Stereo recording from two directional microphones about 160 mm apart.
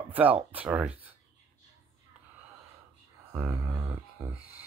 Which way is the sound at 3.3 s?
15° right (ahead or behind).